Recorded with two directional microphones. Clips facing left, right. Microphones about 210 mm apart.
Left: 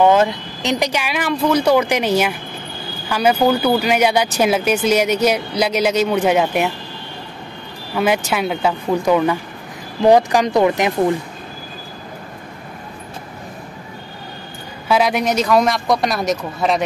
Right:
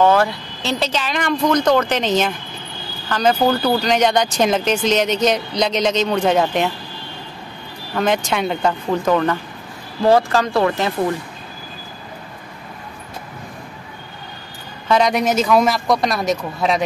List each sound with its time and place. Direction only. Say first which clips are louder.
0.0 s speech: left 2 dB; 20° left (ahead or behind)
7.9 s speech: left 1 dB; 5° left (ahead or behind)
14.9 s speech: even; 5° left (ahead or behind)